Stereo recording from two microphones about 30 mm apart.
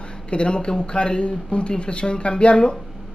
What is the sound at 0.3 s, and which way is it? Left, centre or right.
Speech, left.